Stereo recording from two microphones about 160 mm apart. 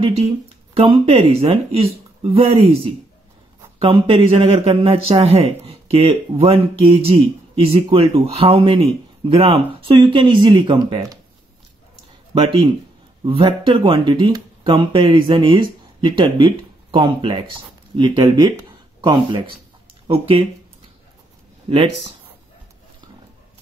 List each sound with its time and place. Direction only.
0.7 s speech: 35° right (ahead or behind)
13.2 s speech: 35° right (ahead or behind)
21.6 s speech: 35° right (ahead or behind)